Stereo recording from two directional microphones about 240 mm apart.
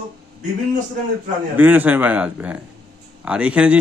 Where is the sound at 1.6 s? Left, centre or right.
Centre.